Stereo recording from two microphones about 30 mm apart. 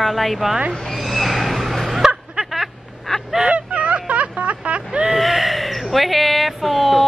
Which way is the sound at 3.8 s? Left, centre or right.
Right.